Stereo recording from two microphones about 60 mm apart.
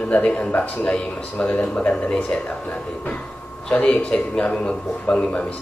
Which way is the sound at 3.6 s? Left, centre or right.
Centre.